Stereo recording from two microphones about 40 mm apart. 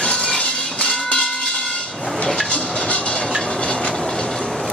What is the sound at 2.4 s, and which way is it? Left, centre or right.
Train, left.